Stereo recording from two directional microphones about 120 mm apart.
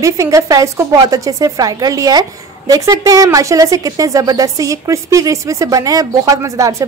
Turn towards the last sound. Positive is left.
turn(degrees=-25)  # may be behind; listen again after turning